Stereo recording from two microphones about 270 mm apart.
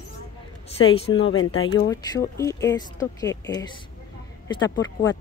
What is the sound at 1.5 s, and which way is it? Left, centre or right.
Speech, centre.